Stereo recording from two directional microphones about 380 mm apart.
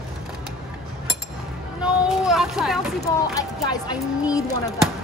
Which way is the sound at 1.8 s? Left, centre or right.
Centre.